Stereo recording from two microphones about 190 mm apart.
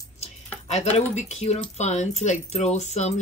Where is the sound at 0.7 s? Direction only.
35° left (ahead or behind).